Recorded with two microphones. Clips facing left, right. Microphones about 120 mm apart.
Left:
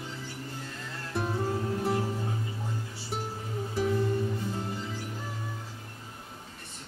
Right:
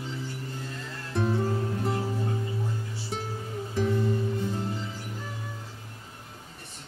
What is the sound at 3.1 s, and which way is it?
Music, 5° left (ahead or behind).